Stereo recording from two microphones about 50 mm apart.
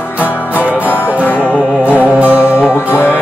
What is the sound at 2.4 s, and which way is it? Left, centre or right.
Music, left.